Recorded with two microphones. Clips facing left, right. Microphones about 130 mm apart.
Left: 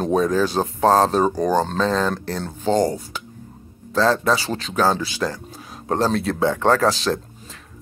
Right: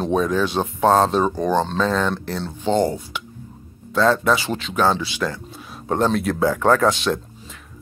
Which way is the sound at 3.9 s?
35° left (ahead or behind).